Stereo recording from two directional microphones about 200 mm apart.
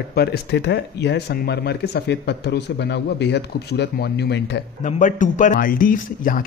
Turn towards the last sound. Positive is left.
turn(degrees=45)  # may be behind; listen again after turning